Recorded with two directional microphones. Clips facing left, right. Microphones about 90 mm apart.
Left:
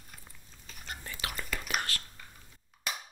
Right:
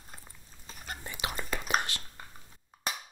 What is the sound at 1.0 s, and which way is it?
Whispering, 20° right (ahead or behind).